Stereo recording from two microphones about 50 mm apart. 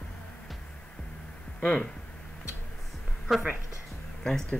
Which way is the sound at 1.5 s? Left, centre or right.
Left.